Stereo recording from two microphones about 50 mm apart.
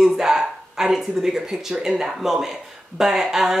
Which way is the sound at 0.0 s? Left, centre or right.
Centre.